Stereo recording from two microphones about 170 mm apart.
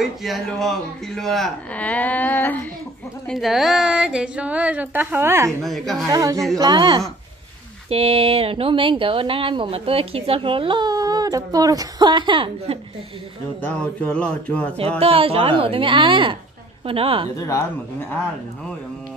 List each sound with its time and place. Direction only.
0.0 s speech: centre (ahead or behind)
3.3 s speech: centre (ahead or behind)
5.6 s a woman's voice: centre (ahead or behind)
6.0 s speech: 20° right (ahead or behind)
13.6 s speech: 10° left (ahead or behind)
15.0 s speech: 35° right (ahead or behind)
17.4 s speech: 20° left (ahead or behind)